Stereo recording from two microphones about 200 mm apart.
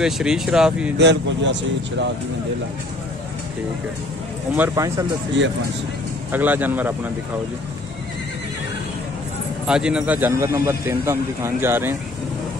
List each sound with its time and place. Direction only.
0.0 s speech: 5° right (ahead or behind)
0.9 s speech: 60° right (ahead or behind)
4.6 s speech: 15° right (ahead or behind)
6.3 s speech: 10° right (ahead or behind)
9.7 s speech: 5° right (ahead or behind)